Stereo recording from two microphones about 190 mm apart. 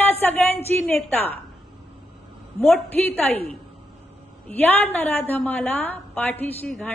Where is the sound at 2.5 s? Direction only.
5° left (ahead or behind).